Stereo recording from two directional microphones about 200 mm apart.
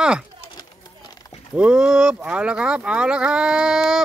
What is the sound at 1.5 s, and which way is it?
Speech, 5° right (ahead or behind).